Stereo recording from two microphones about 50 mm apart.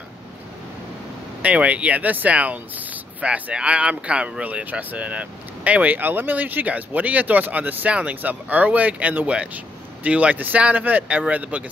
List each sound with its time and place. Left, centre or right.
1.4 s speech: right